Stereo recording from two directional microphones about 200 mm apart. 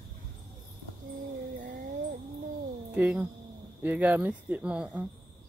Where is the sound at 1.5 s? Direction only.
40° right (ahead or behind).